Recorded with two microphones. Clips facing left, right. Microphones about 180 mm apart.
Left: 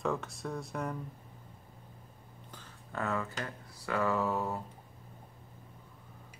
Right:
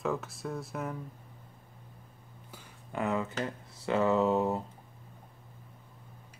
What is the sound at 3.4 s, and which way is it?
Speech, 20° right (ahead or behind).